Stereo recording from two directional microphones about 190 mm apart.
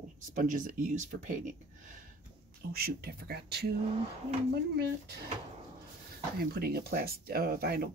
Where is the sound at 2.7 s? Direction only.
55° right (ahead or behind).